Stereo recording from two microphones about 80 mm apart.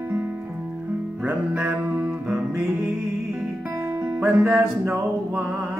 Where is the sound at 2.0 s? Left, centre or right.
Centre.